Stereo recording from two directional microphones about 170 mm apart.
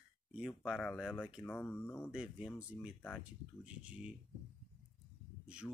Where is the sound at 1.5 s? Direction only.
10° left (ahead or behind).